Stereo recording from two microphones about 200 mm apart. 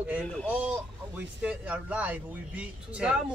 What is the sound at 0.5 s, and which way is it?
Speech, 5° right (ahead or behind).